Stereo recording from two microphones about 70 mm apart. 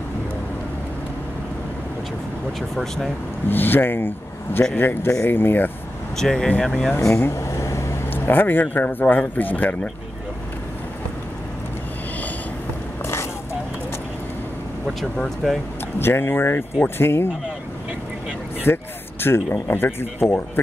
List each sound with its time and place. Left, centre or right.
2.7 s speech: centre
3.4 s speech: left
6.1 s speech: centre
7.0 s air conditioning: left
8.1 s speech: left
13.0 s a sound: left
15.0 s speech: centre
16.0 s speech: left
18.7 s speech: left